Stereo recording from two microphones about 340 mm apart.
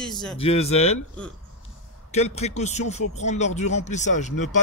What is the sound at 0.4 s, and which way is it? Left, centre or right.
Speech, centre.